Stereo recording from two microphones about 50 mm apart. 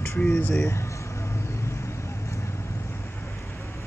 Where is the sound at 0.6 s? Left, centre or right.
Left.